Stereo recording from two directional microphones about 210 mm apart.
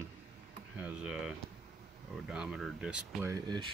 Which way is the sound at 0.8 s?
5° right (ahead or behind).